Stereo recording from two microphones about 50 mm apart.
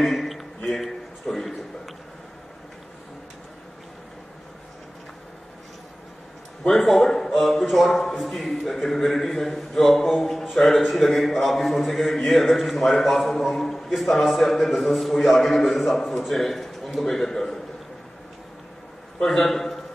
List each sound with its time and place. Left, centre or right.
0.0 s speech: centre
0.7 s a sound: centre
6.7 s a man's voice: centre
19.2 s a man's voice: centre